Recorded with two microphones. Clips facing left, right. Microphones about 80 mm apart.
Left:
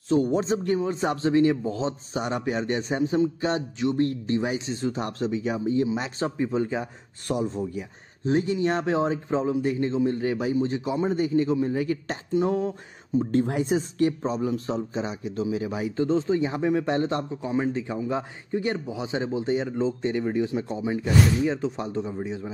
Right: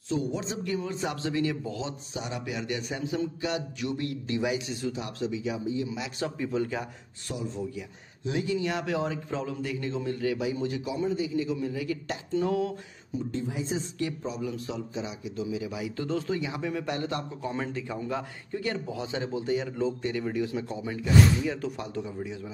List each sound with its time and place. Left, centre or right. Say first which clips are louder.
0.1 s a man's voice: left 8 dB; left
4.9 s a man's voice: left 5 dB; left
5.9 s a man's voice: left 5 dB; left
7.2 s a man's voice: left 7 dB; left
12.4 s a man's voice: left 3 dB; left
13.3 s speech: left 8 dB; left
13.7 s a man's voice: left 8 dB; left
16.0 s a man's voice: left 8 dB; left